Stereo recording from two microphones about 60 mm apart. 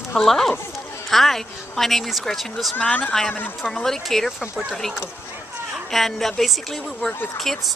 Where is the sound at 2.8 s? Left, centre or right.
Left.